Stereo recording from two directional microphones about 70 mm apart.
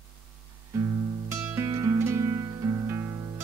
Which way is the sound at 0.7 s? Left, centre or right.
Right.